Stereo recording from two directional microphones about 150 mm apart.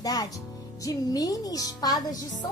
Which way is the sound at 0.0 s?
25° left (ahead or behind).